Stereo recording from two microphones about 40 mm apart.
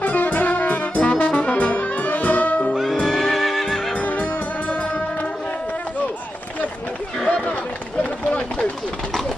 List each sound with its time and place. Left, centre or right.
0.0 s music: left
2.7 s music: centre
3.0 s neigh: centre
8.0 s run: left